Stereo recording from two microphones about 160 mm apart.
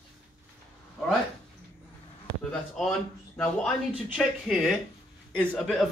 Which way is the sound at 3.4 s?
5° left (ahead or behind).